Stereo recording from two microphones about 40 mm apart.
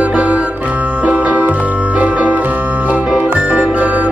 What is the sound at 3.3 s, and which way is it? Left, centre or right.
Music, right.